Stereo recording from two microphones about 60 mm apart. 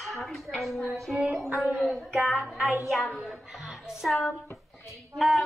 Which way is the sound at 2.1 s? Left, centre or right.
Centre.